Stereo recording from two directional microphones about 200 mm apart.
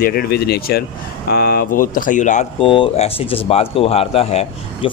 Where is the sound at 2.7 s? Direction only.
25° left (ahead or behind).